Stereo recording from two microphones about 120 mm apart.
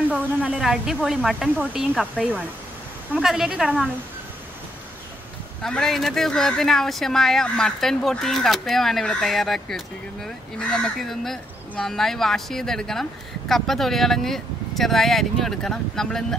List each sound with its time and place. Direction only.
0.2 s speech: 10° right (ahead or behind)
5.6 s speech: 5° left (ahead or behind)